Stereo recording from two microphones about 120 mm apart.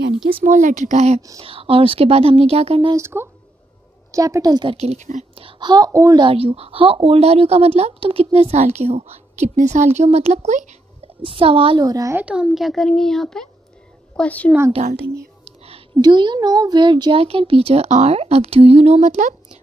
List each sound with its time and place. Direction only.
0.5 s speech: 90° right; by 1.2 s 75° right (ahead or behind)
1.4 s speech: 50° right (ahead or behind)
3.0 s a child's voice: 20° right (ahead or behind); by 4.7 s 35° right (ahead or behind)
4.7 s a woman's voice: 65° right (ahead or behind)
5.3 s a child's voice: 50° right (ahead or behind); by 6.1 s 30° right (ahead or behind)
6.1 s a woman's voice: 50° right (ahead or behind); by 10.8 s 80° right
11.2 s speech: 50° right (ahead or behind)
11.8 s speech: 30° right (ahead or behind)
12.2 s a woman's voice: 10° right (ahead or behind); by 14.5 s 10° left (ahead or behind)
15.4 s whispering: 55° right (ahead or behind)
16.0 s a child's voice: 40° right (ahead or behind)
17.2 s a woman's voice: 50° right (ahead or behind); by 19.3 s 85° right